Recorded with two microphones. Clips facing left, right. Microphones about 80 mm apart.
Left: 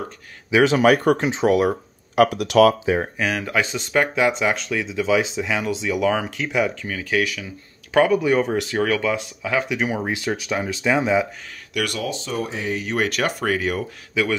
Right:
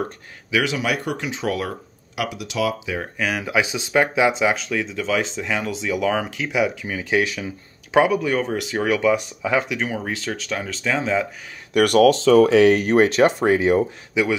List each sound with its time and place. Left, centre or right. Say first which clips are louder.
0.5 s speech: left 5 dB; left
0.7 s speech: left 8 dB; left
1.4 s speech: left 6 dB; left
2.1 s speech: left 10 dB; left
2.8 s speech: left 7 dB; left
3.2 s speech: even; centre; by 8.0 s right
8.0 s speech: left 2 dB; centre
8.9 s speech: right 3 dB; centre
9.6 s speech: left 1 dB; centre
9.8 s speech: left 3 dB; centre
11.7 s speech: right 11 dB; right
12.9 s speech: right 7 dB; right